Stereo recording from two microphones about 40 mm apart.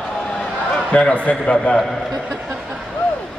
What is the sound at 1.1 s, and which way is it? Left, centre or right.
Speech, left.